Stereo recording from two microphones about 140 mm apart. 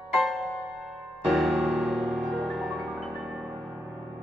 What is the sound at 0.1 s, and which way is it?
Music, centre (ahead or behind).